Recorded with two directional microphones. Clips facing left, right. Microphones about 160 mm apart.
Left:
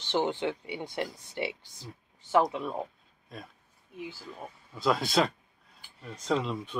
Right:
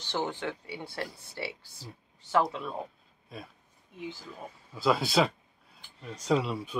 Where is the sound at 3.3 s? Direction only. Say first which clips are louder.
Right 1 dB; 5° right (ahead or behind).